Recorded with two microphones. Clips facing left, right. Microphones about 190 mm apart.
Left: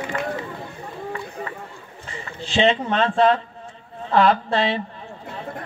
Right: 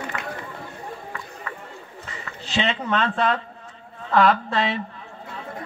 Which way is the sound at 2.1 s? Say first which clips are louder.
Left 5 dB; 30° left (ahead or behind).